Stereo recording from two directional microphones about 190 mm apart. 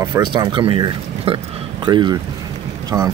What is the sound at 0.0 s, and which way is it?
Speech, 25° right (ahead or behind).